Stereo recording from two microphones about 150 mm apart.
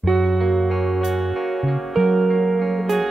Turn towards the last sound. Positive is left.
turn(degrees=0)  # may be behind; listen again after turning